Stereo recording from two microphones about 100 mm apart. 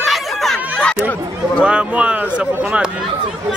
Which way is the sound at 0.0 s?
Centre (ahead or behind).